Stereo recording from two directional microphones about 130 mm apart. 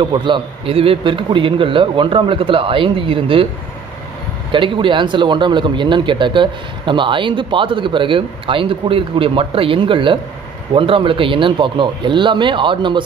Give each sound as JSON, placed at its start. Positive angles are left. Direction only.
{"t": 0.0, "sound": "a man's voice", "side_deg": -40}
{"t": 4.5, "sound": "a man's voice", "side_deg": -40}